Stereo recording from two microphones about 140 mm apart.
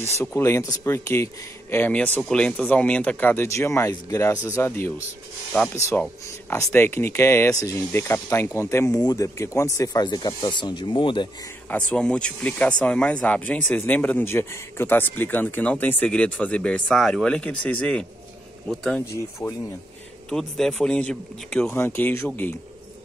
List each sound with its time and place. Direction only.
0.0 s speech: 20° left (ahead or behind); by 11.2 s 35° left (ahead or behind)
11.7 s speech: 10° left (ahead or behind)
19.4 s speech: 15° left (ahead or behind)
20.2 s speech: 5° left (ahead or behind)